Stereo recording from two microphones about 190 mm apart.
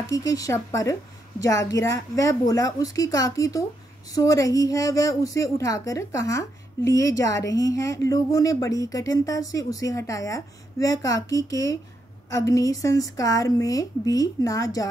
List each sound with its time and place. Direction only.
0.1 s a woman's voice: 20° left (ahead or behind)